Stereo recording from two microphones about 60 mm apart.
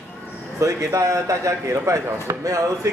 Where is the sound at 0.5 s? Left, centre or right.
Right.